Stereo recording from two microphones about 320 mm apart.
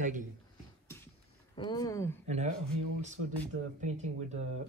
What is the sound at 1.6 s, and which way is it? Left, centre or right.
Speech, centre.